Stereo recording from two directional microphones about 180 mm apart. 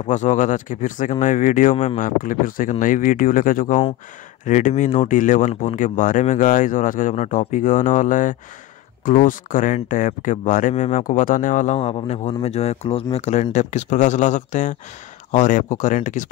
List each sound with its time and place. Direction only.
0.0 s speech: 40° left (ahead or behind)